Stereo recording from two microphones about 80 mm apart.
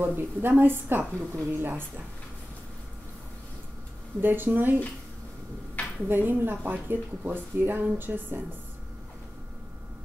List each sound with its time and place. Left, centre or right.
0.0 s speech: right
4.2 s speech: right
6.0 s speech: right